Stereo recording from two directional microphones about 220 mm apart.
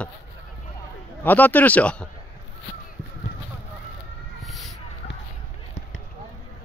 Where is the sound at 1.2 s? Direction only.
10° left (ahead or behind).